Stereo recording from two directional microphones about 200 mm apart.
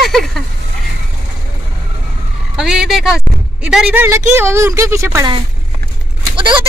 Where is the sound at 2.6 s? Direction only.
Centre (ahead or behind).